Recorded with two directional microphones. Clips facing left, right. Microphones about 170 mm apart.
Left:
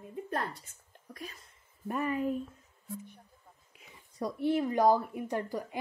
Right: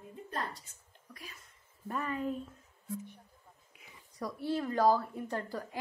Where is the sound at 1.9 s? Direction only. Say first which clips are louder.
Left 4 dB; 10° left (ahead or behind).